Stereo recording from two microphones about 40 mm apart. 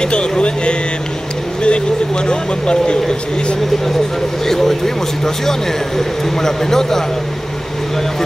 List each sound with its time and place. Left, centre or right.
0.0 s speech: left
4.5 s speech: centre